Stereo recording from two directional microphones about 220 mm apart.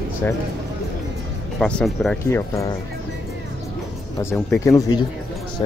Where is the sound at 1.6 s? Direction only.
5° left (ahead or behind).